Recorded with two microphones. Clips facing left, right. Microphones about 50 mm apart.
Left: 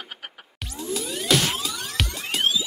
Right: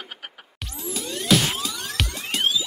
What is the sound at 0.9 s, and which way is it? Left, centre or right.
Music, centre.